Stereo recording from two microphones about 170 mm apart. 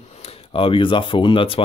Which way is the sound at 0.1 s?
35° left (ahead or behind).